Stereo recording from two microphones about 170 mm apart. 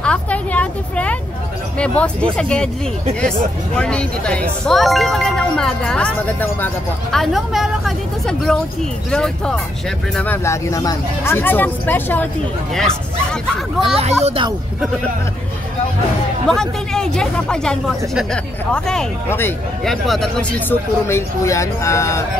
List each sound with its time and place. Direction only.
0.0 s a sound: 5° left (ahead or behind)
1.8 s speech: 5° left (ahead or behind)
13.8 s speech: 35° right (ahead or behind)
16.4 s speech: 5° left (ahead or behind)
19.8 s speech: centre (ahead or behind)
21.1 s speech: 15° left (ahead or behind)